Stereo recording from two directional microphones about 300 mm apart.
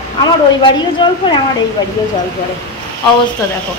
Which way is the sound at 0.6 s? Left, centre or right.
Centre.